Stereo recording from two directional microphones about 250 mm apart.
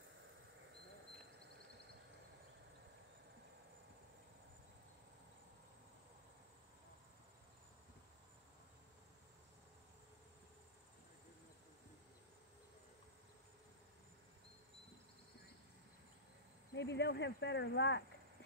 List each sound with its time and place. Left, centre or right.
16.7 s speech: left